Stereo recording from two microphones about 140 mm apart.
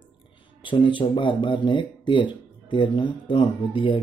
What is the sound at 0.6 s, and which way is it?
Speech, 35° left (ahead or behind).